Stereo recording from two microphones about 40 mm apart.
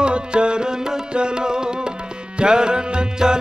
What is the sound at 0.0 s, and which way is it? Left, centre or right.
Music, right.